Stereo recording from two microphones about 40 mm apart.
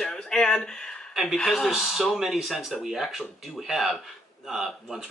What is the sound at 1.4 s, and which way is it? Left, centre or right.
Speech, centre.